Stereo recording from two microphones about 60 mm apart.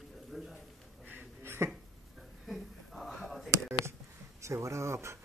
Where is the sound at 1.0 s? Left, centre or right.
Right.